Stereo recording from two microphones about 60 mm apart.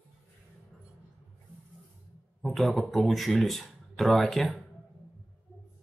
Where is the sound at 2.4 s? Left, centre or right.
Centre.